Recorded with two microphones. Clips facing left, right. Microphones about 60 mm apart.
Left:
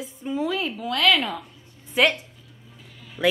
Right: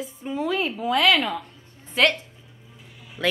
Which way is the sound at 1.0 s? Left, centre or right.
Centre.